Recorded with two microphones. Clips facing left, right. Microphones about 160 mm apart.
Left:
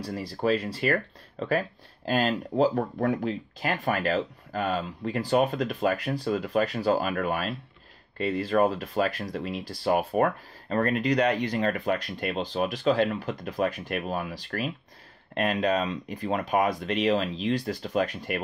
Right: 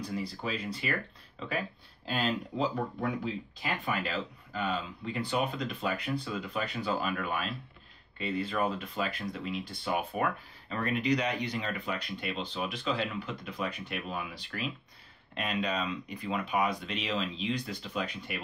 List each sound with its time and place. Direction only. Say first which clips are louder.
0.0 s speech: left 7 dB; 75° left (ahead or behind); by 0.6 s 60° left (ahead or behind)
0.8 s speech: left 8 dB; 50° left (ahead or behind)
2.6 s speech: left 9 dB; 45° left (ahead or behind)
3.7 s speech: left 7 dB; 45° left (ahead or behind)
18.3 s speech: left 8 dB; 55° left (ahead or behind)